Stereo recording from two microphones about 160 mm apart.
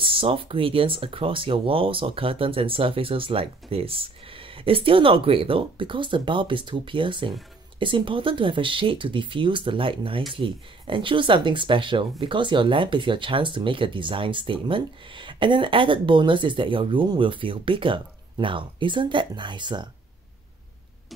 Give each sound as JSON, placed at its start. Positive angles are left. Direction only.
{"t": 0.0, "sound": "speech", "side_deg": -35}